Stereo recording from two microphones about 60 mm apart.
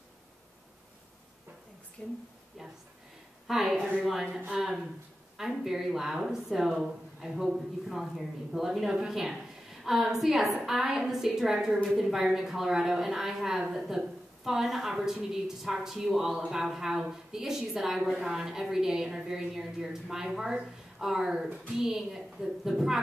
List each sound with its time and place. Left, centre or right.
2.0 s speech: centre
3.4 s a woman's voice: centre